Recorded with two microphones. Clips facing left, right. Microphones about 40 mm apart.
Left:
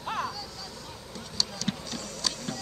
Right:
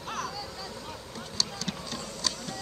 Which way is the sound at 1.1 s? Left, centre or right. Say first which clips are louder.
Left 1 dB; centre.